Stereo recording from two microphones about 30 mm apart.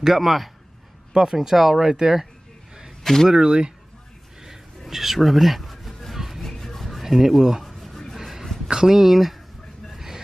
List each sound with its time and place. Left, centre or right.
0.0 s speech: centre
1.1 s speech: centre
3.0 s speech: centre
3.3 s speech: right
4.4 s a sound: centre
6.1 s music: centre
6.4 s rub: centre
7.0 s speech: centre
7.6 s a sound: centre
8.2 s a sound: centre
8.6 s speech: right
8.9 s speech: centre
9.9 s a sound: centre